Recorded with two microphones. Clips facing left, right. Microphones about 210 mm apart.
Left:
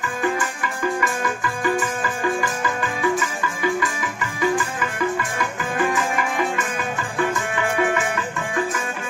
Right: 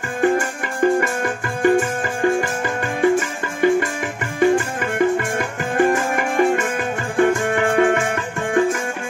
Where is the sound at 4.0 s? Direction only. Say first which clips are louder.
Right 6 dB; 55° right (ahead or behind).